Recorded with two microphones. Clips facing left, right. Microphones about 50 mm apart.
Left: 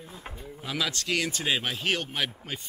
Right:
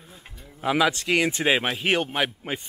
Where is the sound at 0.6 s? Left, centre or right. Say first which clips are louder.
Right 9 dB; right.